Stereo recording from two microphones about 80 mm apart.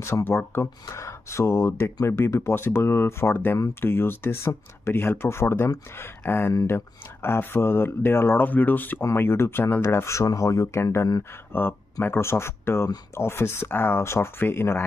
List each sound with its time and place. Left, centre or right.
0.0 s speech: left
0.8 s speech: left
6.5 s speech: left
7.2 s speech: left